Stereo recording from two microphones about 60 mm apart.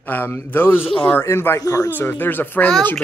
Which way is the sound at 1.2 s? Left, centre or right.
Left.